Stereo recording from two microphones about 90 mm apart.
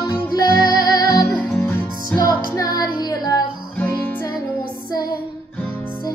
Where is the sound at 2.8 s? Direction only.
50° left (ahead or behind).